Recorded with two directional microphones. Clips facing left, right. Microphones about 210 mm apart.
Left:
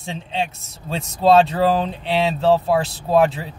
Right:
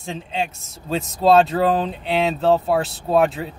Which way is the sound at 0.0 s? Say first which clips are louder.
Even; centre (ahead or behind).